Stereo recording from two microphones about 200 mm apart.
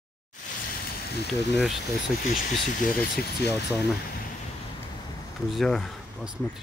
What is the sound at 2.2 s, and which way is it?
Speech, 40° left (ahead or behind).